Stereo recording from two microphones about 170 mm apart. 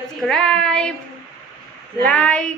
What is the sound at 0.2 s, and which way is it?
Speech, 5° left (ahead or behind).